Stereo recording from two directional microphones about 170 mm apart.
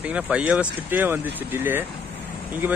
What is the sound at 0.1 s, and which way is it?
Speech, 5° right (ahead or behind).